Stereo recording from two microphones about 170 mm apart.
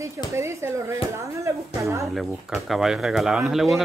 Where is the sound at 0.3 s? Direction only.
15° right (ahead or behind).